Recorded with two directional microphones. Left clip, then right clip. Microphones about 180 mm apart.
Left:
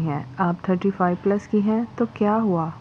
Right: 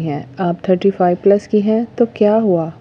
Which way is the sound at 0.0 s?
30° right (ahead or behind).